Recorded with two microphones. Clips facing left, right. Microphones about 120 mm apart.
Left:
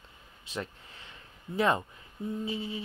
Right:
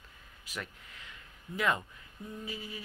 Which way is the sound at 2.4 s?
25° left (ahead or behind).